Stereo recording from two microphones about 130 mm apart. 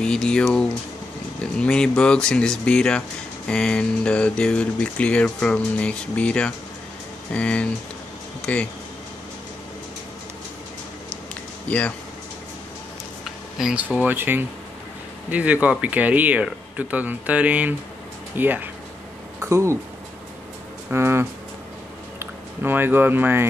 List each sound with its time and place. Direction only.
0.0 s a sound: 5° left (ahead or behind)
1.4 s speech: 5° left (ahead or behind)
8.4 s a sound: 10° left (ahead or behind)
11.7 s speech: 10° left (ahead or behind)
13.6 s speech: 5° right (ahead or behind)
20.9 s speech: 20° right (ahead or behind)